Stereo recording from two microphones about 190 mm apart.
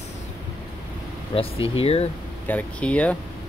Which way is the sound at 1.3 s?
25° left (ahead or behind).